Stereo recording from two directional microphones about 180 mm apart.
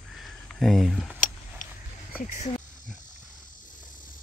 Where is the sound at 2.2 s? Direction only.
45° left (ahead or behind).